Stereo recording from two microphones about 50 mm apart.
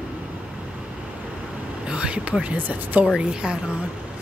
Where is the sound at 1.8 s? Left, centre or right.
Right.